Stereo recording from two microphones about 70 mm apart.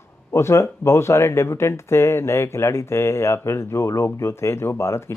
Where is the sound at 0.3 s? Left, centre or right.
Left.